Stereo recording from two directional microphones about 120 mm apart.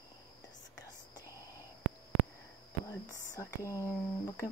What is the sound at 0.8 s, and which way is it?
Whispering, 30° left (ahead or behind).